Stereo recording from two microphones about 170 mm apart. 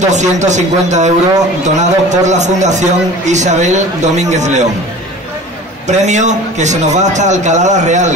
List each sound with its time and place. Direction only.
0.0 s a man's voice: 45° right (ahead or behind)
5.9 s a man's voice: 45° right (ahead or behind)